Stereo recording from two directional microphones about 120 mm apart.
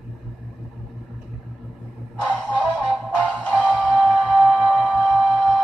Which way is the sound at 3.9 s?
10° right (ahead or behind).